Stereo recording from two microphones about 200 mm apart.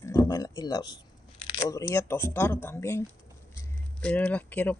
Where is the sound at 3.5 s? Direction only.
5° left (ahead or behind).